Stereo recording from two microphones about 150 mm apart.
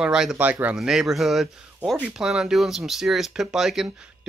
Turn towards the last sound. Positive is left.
turn(degrees=-5)  # may be behind; listen again after turning